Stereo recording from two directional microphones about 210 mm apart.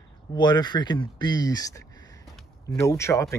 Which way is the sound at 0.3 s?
20° left (ahead or behind).